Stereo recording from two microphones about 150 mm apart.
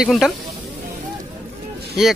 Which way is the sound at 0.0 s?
Centre (ahead or behind).